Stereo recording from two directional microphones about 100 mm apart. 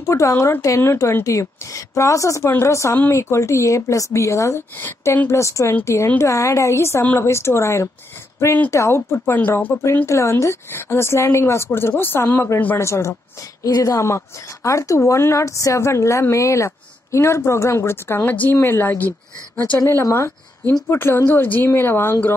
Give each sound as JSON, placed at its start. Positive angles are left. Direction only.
{"t": 0.0, "sound": "a woman's voice", "side_deg": 30}
{"t": 9.2, "sound": "a woman's voice", "side_deg": 15}
{"t": 9.7, "sound": "a woman's voice", "side_deg": 25}
{"t": 13.7, "sound": "a woman's voice", "side_deg": 35}
{"t": 19.9, "sound": "a woman's voice", "side_deg": 30}